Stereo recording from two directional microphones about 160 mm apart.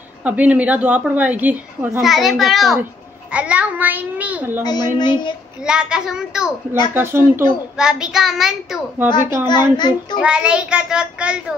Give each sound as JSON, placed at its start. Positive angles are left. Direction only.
{"t": 0.2, "sound": "a woman's voice", "side_deg": -10}
{"t": 4.9, "sound": "a child's voice", "side_deg": 25}
{"t": 5.7, "sound": "a woman's voice", "side_deg": -5}
{"t": 6.9, "sound": "a woman's voice", "side_deg": -15}
{"t": 7.8, "sound": "a woman's voice", "side_deg": -5}
{"t": 9.2, "sound": "a woman's voice", "side_deg": -15}
{"t": 9.5, "sound": "a child's voice", "side_deg": 25}
{"t": 10.2, "sound": "a woman's voice", "side_deg": -5}